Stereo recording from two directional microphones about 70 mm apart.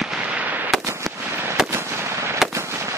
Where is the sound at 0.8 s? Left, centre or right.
Right.